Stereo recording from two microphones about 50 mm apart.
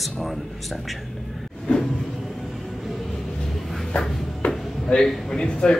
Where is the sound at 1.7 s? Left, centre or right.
Left.